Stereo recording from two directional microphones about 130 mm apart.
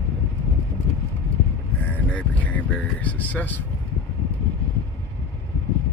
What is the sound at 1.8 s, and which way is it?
Speech, 10° left (ahead or behind).